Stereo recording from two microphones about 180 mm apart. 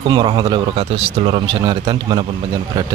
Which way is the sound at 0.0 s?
25° right (ahead or behind).